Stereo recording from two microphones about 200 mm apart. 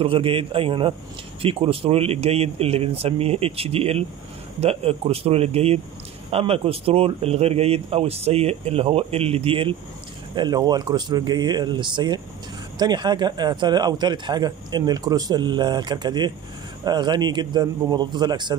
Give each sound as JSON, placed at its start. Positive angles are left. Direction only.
{"t": 0.0, "sound": "a man's voice", "side_deg": -25}